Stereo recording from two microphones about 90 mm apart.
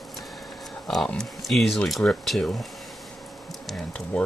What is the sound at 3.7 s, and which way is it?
Speech, 10° left (ahead or behind).